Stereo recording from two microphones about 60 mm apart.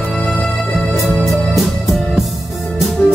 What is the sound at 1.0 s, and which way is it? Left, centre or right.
Music, centre.